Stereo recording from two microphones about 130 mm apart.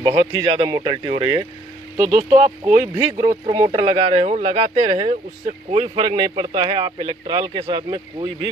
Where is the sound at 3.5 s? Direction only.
30° right (ahead or behind); by 5.1 s 55° right (ahead or behind).